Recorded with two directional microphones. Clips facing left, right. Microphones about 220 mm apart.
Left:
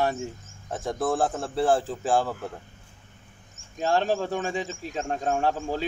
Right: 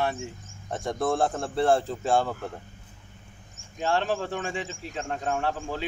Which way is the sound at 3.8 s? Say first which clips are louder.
Left 2 dB; 40° left (ahead or behind).